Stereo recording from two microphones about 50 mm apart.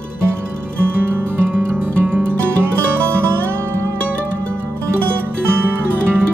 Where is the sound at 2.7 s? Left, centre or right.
Right.